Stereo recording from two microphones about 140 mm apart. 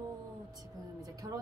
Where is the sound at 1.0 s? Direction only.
25° right (ahead or behind).